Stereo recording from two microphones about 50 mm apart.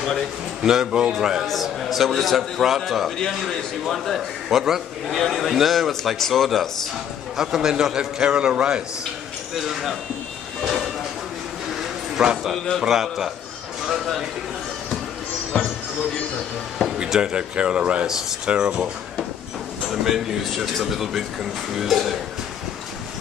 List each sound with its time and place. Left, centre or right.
0.6 s a man's voice: centre
7.3 s a man's voice: centre
9.6 s a man's voice: centre
10.6 s vehicle: centre
11.8 s bow-wow: centre
12.8 s a man's voice: centre
17.2 s speech: centre
18.0 s a man's voice: centre
18.5 s speech: right
19.9 s a man's voice: centre